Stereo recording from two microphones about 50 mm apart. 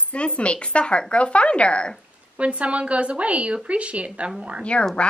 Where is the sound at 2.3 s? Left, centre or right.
Right.